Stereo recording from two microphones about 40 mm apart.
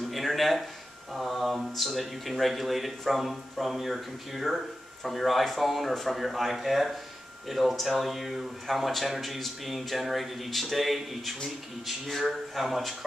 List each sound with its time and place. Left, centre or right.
0.1 s a man's voice: centre